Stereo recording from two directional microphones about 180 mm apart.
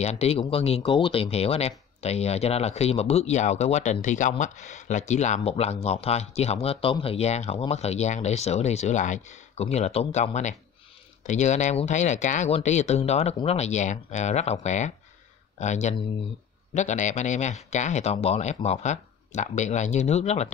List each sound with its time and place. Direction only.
0.0 s speech: 35° left (ahead or behind)